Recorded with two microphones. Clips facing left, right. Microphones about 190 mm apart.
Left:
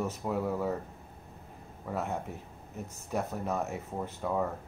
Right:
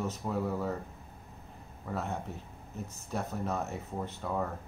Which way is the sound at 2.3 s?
10° left (ahead or behind).